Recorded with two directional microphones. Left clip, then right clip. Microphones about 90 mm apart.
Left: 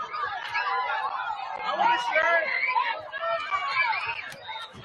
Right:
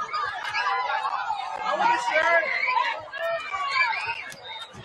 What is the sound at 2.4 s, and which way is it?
Chatter, 40° left (ahead or behind).